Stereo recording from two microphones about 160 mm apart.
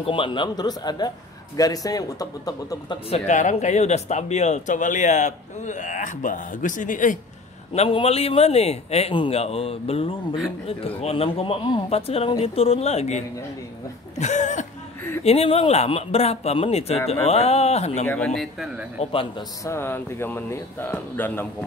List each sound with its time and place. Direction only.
0.0 s speech: 35° left (ahead or behind)
3.1 s speech: 50° left (ahead or behind)
7.7 s speech: 40° left (ahead or behind)
14.1 s a sound: 45° left (ahead or behind)
15.2 s speech: 40° left (ahead or behind)
18.0 s speech: 10° left (ahead or behind)
18.9 s speech: 35° left (ahead or behind)
19.6 s speech: 15° left (ahead or behind)